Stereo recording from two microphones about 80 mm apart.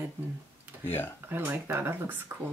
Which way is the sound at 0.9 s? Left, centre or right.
Left.